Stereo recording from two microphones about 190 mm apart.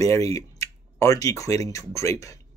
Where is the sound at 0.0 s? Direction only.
15° left (ahead or behind).